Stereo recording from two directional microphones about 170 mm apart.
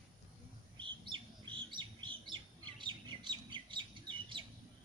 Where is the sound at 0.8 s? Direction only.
30° right (ahead or behind).